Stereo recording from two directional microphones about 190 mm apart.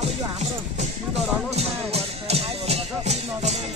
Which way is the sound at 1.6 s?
30° right (ahead or behind).